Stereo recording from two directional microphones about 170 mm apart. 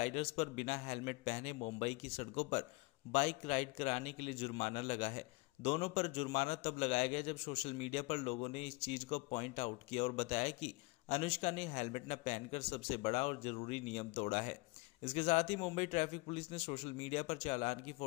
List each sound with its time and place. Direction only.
0.0 s a man's voice: 35° left (ahead or behind)